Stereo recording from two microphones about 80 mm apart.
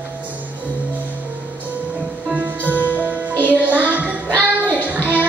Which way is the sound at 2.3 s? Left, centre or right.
Centre.